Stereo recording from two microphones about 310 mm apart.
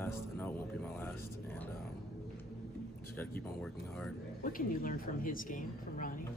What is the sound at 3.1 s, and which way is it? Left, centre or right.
Speech, centre.